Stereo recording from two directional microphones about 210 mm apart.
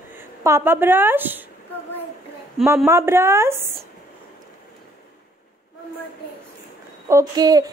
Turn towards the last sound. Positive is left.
turn(degrees=-15)  # may be behind; listen again after turning